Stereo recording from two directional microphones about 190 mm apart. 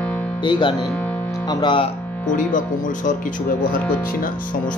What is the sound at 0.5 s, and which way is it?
Speech, 25° left (ahead or behind).